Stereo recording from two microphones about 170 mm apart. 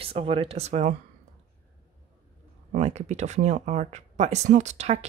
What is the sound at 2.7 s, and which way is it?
Speech, 40° right (ahead or behind).